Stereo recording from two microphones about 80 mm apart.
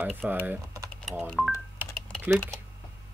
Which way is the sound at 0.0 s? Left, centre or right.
Centre.